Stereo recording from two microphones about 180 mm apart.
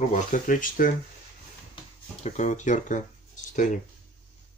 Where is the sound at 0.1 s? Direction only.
45° left (ahead or behind).